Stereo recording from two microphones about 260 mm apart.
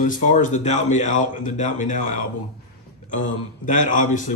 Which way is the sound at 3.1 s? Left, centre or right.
Left.